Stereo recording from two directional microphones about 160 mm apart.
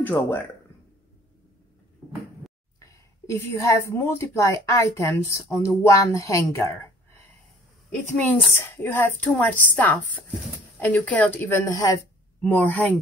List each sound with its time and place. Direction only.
0.0 s a woman's voice: 15° left (ahead or behind)
2.8 s a woman's voice: 20° left (ahead or behind)
8.2 s a woman's voice: 10° left (ahead or behind)